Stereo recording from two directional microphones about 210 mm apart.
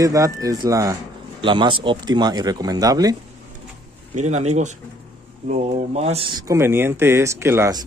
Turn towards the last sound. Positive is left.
turn(degrees=-15)  # may be behind; listen again after turning